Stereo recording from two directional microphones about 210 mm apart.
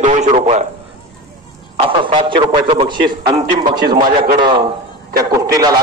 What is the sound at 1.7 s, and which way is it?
A man's voice, 25° right (ahead or behind).